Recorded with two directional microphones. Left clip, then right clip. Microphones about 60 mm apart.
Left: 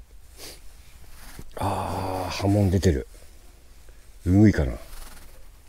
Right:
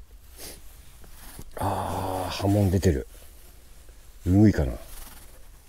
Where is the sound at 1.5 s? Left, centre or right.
Left.